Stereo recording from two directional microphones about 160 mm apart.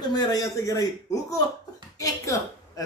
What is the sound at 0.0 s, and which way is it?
A man's voice, 25° left (ahead or behind).